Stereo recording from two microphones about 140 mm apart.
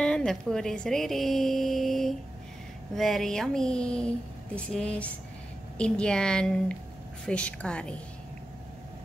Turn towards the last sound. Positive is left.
turn(degrees=5)  # may be behind; listen again after turning